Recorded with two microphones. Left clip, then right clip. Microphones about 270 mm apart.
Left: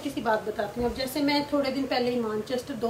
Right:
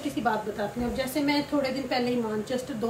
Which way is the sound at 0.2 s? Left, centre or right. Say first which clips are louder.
Left 1 dB; centre.